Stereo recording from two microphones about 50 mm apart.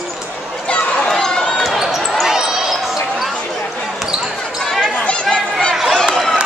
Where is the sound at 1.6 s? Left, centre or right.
Centre.